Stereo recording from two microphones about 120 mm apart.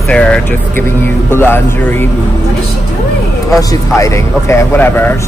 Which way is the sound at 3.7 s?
25° left (ahead or behind).